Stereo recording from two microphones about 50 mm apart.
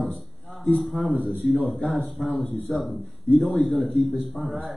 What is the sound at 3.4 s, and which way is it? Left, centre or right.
Speech, centre.